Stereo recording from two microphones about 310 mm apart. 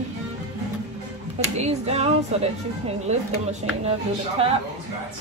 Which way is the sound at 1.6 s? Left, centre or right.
Centre.